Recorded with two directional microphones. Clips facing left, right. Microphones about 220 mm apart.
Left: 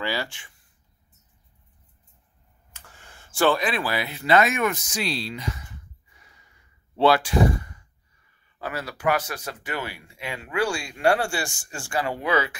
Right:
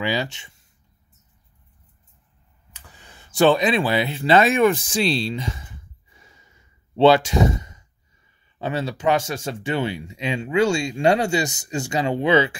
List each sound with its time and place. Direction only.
0.0 s speech: 20° right (ahead or behind)
2.7 s a sound: 15° right (ahead or behind)
8.5 s speech: 25° right (ahead or behind)